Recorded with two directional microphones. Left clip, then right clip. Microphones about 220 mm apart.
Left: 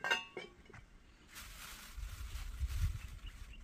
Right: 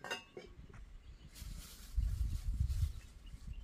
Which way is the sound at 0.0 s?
30° left (ahead or behind).